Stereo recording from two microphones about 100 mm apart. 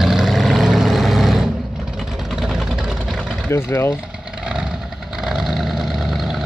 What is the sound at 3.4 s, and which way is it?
Speech, 25° left (ahead or behind).